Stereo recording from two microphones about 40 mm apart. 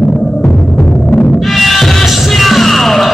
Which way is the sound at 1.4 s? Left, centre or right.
Centre.